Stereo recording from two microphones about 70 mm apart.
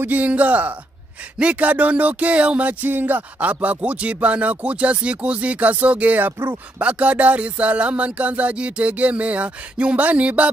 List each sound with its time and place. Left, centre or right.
0.0 s music: right